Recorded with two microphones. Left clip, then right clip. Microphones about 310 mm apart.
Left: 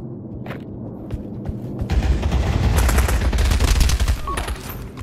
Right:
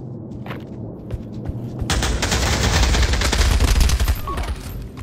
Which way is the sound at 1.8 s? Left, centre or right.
Right.